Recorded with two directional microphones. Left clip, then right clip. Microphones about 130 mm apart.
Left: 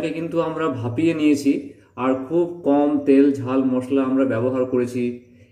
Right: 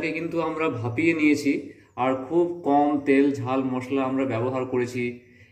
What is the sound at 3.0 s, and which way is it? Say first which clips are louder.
A man's voice: left 5 dB; 20° left (ahead or behind).